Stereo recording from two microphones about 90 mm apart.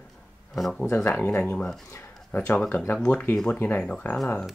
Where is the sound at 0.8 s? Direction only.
25° left (ahead or behind).